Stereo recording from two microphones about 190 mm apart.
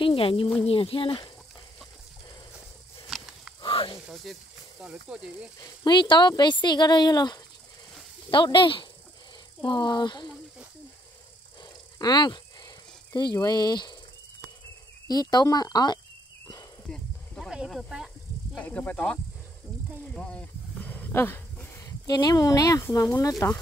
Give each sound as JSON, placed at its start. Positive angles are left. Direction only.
{"t": 0.0, "sound": "a sound", "side_deg": 30}
{"t": 0.6, "sound": "speech", "side_deg": 30}
{"t": 3.1, "sound": "a sound", "side_deg": -5}
{"t": 3.6, "sound": "snake", "side_deg": 25}
{"t": 4.1, "sound": "speech", "side_deg": 0}
{"t": 5.6, "sound": "speech", "side_deg": 25}
{"t": 12.0, "sound": "speech", "side_deg": 25}
{"t": 15.0, "sound": "speech", "side_deg": 20}
{"t": 16.9, "sound": "snake", "side_deg": 0}
{"t": 20.2, "sound": "wild animals", "side_deg": 5}
{"t": 23.4, "sound": "speech", "side_deg": 15}